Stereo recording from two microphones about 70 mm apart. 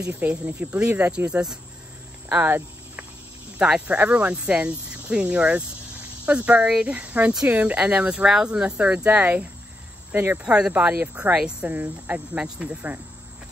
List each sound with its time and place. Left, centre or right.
0.3 s speech: right
0.7 s speech: centre
2.2 s a sound: right
3.5 s speech: centre
10.4 s speech: centre
10.7 s speech: right